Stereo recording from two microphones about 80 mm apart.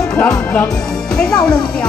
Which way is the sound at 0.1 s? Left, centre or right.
Centre.